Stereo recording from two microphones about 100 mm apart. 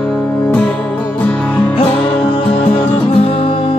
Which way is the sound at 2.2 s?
65° left (ahead or behind).